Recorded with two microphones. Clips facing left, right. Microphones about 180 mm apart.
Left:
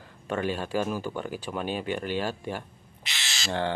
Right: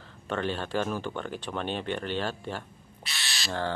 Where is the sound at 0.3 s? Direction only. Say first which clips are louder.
Left 2 dB; 10° left (ahead or behind).